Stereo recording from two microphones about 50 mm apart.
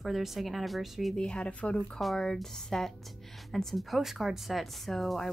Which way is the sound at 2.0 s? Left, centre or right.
Centre.